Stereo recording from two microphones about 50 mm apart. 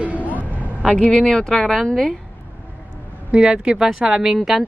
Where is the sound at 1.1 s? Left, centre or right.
Centre.